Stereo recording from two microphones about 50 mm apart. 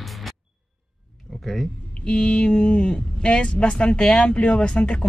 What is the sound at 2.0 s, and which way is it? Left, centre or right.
Speech, left.